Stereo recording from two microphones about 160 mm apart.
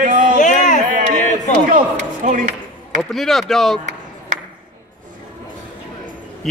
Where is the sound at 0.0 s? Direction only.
55° right (ahead or behind).